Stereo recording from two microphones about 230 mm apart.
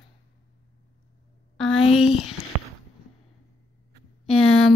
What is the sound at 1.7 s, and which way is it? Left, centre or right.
Speech, left.